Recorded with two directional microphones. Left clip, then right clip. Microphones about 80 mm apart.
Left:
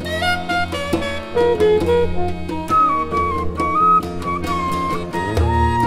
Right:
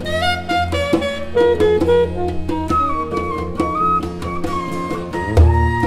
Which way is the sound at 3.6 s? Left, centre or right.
Centre.